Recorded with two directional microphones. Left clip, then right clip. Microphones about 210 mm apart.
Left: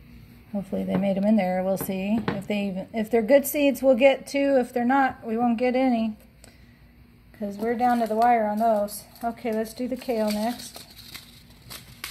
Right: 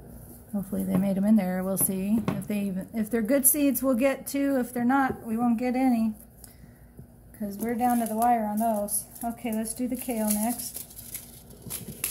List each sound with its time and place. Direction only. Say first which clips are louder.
0.7 s speech: left 4 dB; centre (ahead or behind)
7.3 s speech: left 4 dB; 15° left (ahead or behind)